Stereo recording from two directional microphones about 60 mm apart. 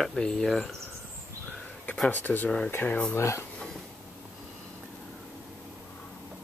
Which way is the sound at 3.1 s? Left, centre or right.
Left.